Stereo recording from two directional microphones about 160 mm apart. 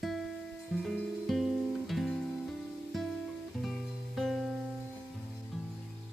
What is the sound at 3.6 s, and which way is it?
Music, centre (ahead or behind).